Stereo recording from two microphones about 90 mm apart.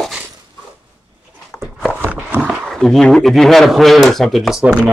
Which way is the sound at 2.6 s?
Centre (ahead or behind).